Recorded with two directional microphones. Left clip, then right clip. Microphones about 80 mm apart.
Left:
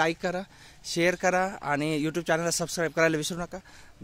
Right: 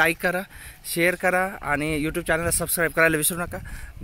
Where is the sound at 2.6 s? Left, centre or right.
Left.